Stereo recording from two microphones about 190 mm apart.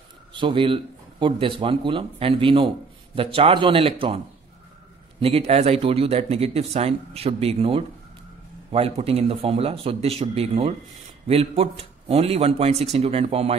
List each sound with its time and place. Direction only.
0.3 s a man's voice: 25° right (ahead or behind)
5.2 s speech: 35° right (ahead or behind)